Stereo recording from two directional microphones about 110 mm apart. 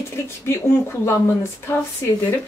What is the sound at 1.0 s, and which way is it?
Speech, 20° left (ahead or behind).